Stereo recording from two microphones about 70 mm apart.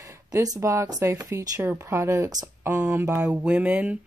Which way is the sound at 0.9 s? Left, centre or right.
Right.